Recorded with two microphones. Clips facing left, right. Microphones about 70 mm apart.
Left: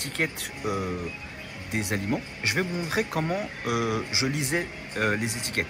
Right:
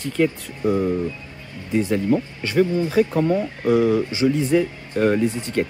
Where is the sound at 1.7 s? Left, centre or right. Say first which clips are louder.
Right 9 dB; left.